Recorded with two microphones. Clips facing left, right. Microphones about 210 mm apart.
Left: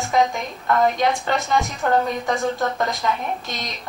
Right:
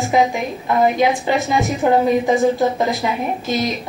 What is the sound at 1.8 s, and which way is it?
Speech, 15° right (ahead or behind).